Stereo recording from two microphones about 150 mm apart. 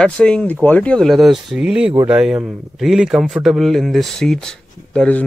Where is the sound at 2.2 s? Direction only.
5° right (ahead or behind).